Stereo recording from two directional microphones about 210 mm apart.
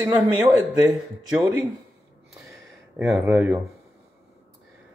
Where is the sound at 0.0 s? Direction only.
15° right (ahead or behind).